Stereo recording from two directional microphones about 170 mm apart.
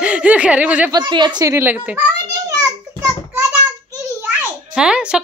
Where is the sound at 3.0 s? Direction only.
15° right (ahead or behind).